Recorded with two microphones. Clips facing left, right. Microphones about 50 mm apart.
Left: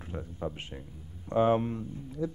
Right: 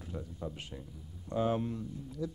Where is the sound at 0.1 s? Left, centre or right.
Left.